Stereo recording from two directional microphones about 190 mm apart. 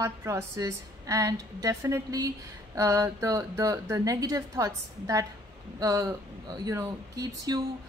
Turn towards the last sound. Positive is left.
turn(degrees=-20)  # may be behind; listen again after turning